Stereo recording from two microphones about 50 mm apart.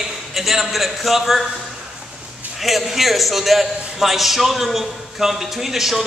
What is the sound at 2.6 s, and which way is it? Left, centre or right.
A man's voice, centre.